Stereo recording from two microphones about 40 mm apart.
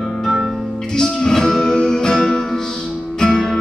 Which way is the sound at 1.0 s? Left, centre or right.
Centre.